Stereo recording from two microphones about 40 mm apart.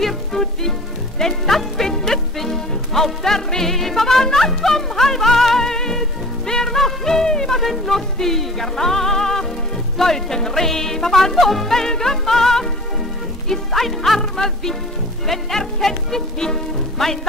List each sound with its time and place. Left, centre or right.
0.0 s music: centre